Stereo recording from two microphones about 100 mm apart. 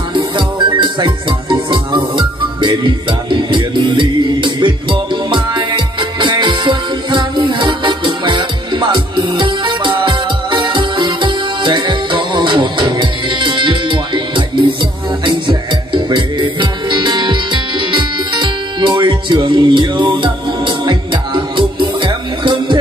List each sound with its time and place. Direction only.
0.1 s music: 55° right (ahead or behind)